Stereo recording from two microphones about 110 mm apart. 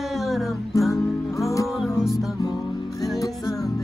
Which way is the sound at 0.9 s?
30° left (ahead or behind).